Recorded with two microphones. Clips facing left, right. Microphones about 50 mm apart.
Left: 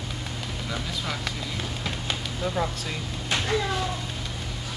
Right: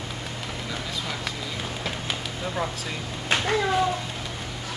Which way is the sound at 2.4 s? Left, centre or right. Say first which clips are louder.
Left 1 dB; right.